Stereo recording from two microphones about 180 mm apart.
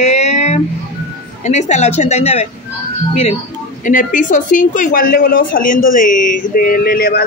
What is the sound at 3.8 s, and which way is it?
Speech, 45° left (ahead or behind).